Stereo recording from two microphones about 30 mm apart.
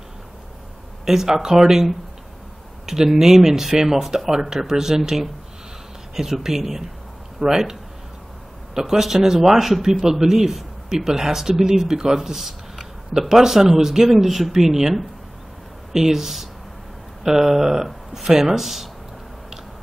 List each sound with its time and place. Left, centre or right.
1.0 s a man's voice: centre
2.9 s a man's voice: centre
8.7 s a man's voice: centre